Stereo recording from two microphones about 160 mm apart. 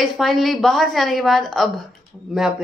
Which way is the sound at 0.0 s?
Centre (ahead or behind).